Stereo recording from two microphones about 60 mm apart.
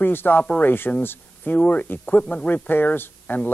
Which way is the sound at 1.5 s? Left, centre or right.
Centre.